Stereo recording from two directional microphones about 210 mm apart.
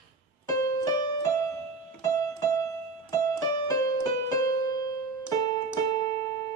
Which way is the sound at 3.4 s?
15° left (ahead or behind).